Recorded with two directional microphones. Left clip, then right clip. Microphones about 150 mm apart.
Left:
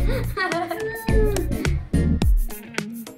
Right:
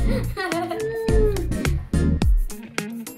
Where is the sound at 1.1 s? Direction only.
Centre (ahead or behind).